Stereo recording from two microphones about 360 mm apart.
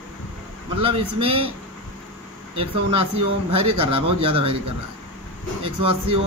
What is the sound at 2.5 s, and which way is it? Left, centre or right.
Speech, centre.